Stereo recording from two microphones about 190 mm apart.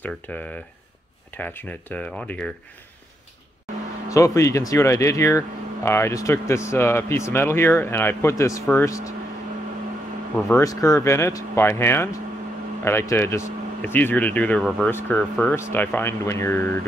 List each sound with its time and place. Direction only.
0.0 s speech: 5° left (ahead or behind)
4.1 s speech: 15° left (ahead or behind)
10.3 s speech: 15° left (ahead or behind)